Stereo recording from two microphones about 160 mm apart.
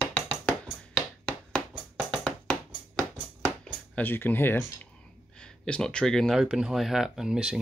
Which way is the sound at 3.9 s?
15° left (ahead or behind).